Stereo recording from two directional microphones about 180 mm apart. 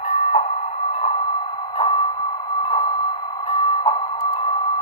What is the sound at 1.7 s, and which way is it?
Music, 35° left (ahead or behind).